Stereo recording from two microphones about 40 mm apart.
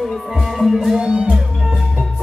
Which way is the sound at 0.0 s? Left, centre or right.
Centre.